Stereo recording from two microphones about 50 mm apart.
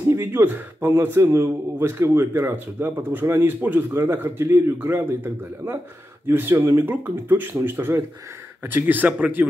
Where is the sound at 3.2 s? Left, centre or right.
Right.